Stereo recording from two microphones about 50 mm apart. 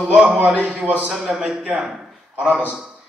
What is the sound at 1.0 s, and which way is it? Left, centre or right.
Speech, centre.